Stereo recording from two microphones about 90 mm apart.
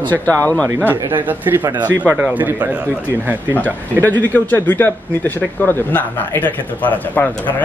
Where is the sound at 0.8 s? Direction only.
20° right (ahead or behind).